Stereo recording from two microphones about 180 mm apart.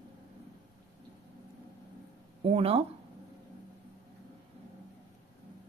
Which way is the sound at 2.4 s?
35° right (ahead or behind).